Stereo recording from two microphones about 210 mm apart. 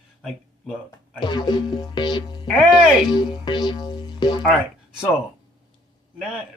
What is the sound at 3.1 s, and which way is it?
Music, 20° left (ahead or behind).